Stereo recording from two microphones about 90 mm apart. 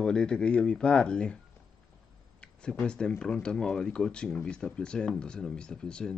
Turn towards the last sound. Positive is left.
turn(degrees=10)  # may be behind; listen again after turning